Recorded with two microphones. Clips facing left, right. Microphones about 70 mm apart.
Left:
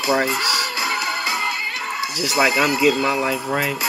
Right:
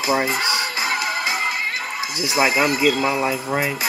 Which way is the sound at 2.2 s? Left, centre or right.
Centre.